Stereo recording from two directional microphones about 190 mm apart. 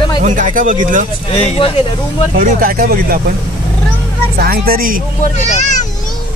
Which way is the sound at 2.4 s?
45° right (ahead or behind).